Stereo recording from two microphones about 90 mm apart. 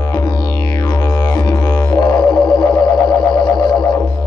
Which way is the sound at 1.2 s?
45° left (ahead or behind).